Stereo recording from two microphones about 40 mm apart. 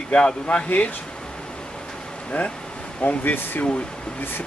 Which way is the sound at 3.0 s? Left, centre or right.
Left.